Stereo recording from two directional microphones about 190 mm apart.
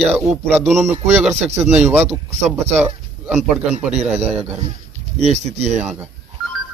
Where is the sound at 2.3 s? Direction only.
35° right (ahead or behind).